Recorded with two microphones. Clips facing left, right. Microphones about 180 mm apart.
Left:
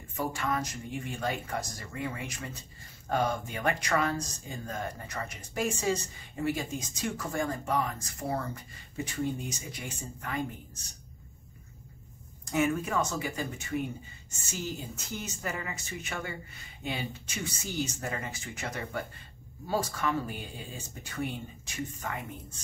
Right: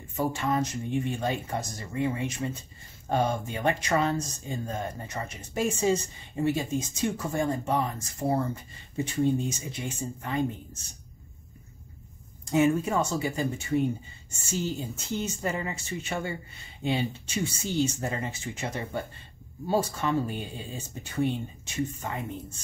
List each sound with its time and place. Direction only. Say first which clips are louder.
0.1 s speech: right 4 dB; 25° right (ahead or behind)
12.4 s speech: right 5 dB; 25° right (ahead or behind)
15.1 s speech: right 6 dB; 25° right (ahead or behind)